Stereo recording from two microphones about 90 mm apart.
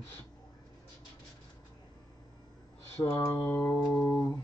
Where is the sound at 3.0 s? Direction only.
35° left (ahead or behind).